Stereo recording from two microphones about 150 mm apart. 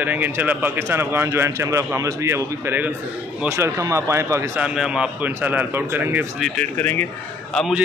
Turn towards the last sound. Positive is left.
turn(degrees=0)  # may be behind; listen again after turning